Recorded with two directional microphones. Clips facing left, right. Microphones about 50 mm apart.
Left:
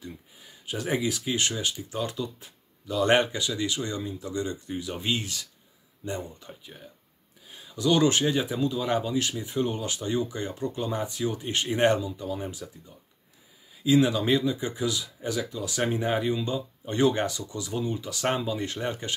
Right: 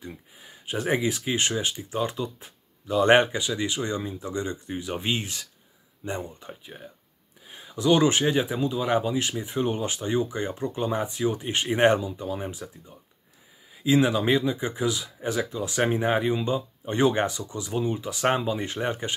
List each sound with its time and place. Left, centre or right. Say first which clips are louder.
0.0 s speech: right 2 dB; right